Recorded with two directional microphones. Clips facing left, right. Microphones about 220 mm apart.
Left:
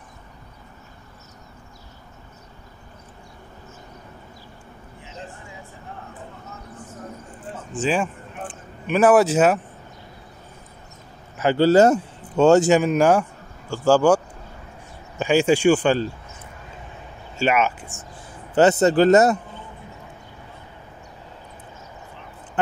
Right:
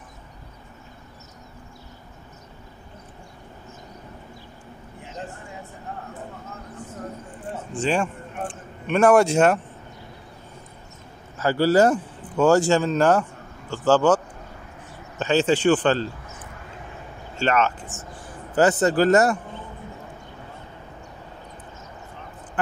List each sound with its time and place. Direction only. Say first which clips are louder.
7.8 s a man's voice: left 1 dB; 5° left (ahead or behind)
11.3 s a man's voice: left 3 dB; 20° left (ahead or behind)
17.4 s speech: left 1 dB; 10° left (ahead or behind)
18.5 s a man's voice: left 3 dB; 25° left (ahead or behind)